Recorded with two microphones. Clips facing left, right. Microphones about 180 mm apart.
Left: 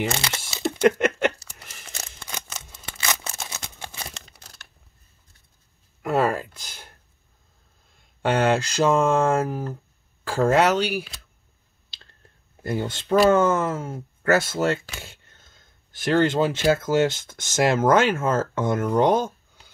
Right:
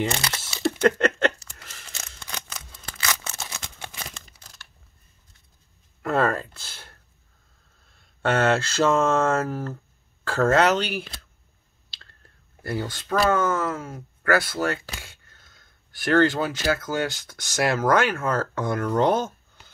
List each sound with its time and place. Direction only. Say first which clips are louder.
0.5 s a sound: left 1 dB; 20° left (ahead or behind)
6.0 s speech: left 1 dB; 10° left (ahead or behind)
12.6 s speech: left 3 dB; 20° left (ahead or behind)